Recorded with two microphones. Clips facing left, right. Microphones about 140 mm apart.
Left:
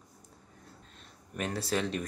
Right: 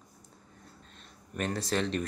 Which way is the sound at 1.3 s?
5° left (ahead or behind).